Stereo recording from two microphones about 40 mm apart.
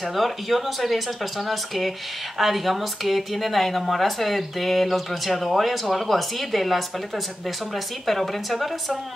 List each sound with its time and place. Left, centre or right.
0.1 s speech: centre
2.3 s speech: centre
8.1 s speech: centre